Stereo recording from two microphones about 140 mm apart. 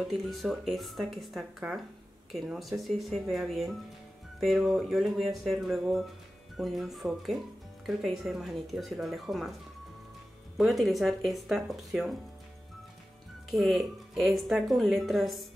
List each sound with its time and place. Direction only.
0.1 s speech: centre (ahead or behind)
10.6 s speech: centre (ahead or behind)
13.5 s speech: centre (ahead or behind)